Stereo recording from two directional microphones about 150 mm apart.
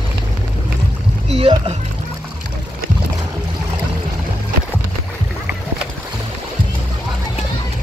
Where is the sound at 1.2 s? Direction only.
40° right (ahead or behind).